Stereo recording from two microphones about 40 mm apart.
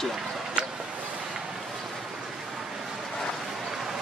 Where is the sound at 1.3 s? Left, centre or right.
Centre.